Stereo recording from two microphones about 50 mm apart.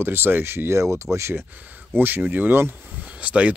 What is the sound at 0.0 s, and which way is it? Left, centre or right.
Speech, right.